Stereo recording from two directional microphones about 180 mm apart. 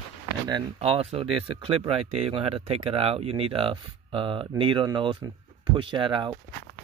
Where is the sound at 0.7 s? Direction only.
30° right (ahead or behind).